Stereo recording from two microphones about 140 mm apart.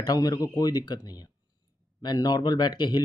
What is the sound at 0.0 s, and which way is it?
Speech, 25° left (ahead or behind).